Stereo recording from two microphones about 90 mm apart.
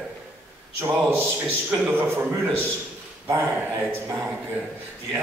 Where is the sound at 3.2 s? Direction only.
25° right (ahead or behind).